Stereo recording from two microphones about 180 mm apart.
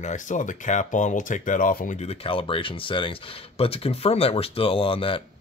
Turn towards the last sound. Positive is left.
turn(degrees=30)  # may be behind; listen again after turning